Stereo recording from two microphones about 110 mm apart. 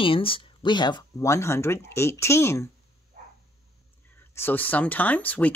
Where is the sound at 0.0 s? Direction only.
55° left (ahead or behind).